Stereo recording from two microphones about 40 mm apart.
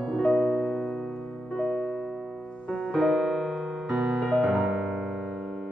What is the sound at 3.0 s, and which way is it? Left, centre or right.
Music, centre.